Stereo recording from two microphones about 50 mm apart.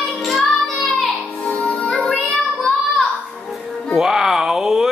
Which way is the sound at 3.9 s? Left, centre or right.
Centre.